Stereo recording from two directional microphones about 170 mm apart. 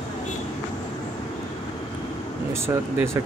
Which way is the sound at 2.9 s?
15° right (ahead or behind).